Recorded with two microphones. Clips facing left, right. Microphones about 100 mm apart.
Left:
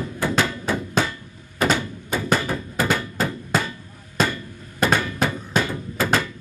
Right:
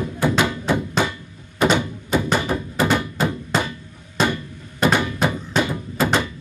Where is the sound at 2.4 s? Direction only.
20° right (ahead or behind).